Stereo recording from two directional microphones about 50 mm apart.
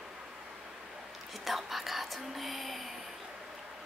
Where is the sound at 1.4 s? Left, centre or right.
Centre.